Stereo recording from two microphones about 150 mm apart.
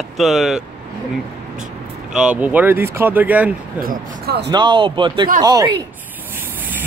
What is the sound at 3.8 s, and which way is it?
Speech, 75° right (ahead or behind).